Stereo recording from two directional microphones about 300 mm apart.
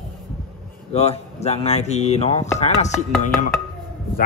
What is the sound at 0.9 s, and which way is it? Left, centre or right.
Speech, left.